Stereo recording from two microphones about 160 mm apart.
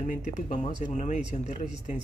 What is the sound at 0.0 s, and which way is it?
Speech, 50° left (ahead or behind).